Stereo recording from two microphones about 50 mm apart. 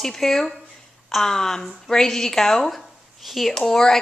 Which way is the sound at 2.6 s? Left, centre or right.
Centre.